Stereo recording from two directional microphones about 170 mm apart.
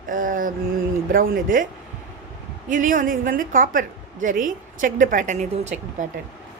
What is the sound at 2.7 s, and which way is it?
A woman's voice, 50° right (ahead or behind).